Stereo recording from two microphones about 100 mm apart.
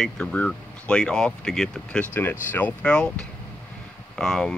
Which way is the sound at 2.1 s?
20° left (ahead or behind).